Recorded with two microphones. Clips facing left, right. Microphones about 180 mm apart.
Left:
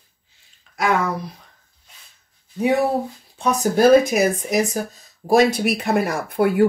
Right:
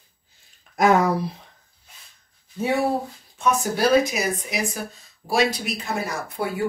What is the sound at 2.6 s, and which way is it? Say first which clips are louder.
Speech: left 4 dB; 20° left (ahead or behind).